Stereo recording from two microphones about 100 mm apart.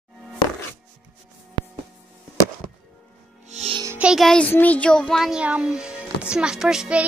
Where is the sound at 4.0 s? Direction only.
5° right (ahead or behind).